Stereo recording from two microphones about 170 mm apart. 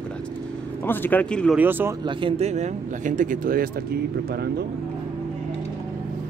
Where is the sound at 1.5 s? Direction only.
10° right (ahead or behind).